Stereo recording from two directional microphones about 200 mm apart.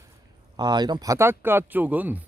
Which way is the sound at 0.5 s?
20° right (ahead or behind).